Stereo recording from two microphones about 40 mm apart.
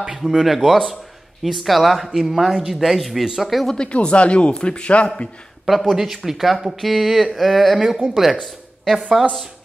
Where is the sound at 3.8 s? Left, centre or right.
Left.